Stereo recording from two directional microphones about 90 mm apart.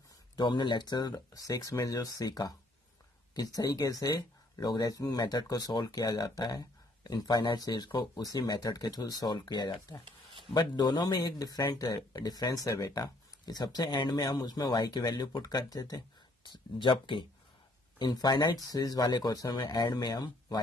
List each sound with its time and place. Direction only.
0.4 s speech: 60° left (ahead or behind)
16.4 s speech: 60° left (ahead or behind)